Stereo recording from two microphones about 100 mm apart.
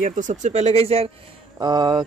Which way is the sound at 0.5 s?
90° right.